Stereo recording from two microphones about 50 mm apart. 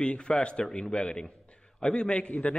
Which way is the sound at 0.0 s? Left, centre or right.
Left.